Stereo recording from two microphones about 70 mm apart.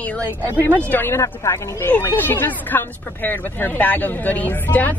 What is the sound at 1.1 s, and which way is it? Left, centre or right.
Speech, left.